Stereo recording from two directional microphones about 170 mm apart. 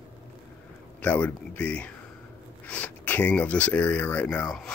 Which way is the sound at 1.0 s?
10° left (ahead or behind).